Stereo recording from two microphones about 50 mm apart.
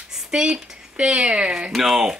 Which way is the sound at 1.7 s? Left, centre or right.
Centre.